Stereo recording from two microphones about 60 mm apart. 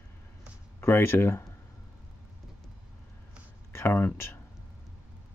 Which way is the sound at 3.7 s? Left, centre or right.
Left.